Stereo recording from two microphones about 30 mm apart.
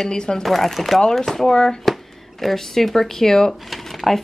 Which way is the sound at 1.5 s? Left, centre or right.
Centre.